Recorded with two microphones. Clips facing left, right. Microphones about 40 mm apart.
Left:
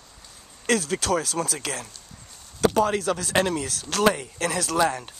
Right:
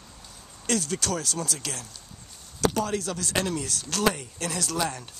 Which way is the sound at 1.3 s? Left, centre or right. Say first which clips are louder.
Left 4 dB; left.